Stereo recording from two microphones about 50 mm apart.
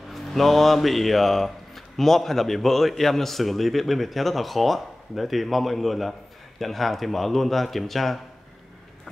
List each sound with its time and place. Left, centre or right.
0.1 s a man's voice: centre